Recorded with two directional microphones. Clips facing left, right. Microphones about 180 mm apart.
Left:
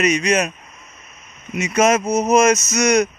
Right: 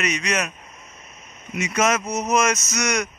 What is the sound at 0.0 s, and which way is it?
Speech, 20° left (ahead or behind).